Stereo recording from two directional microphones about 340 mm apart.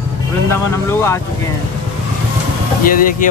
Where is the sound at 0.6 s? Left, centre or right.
Centre.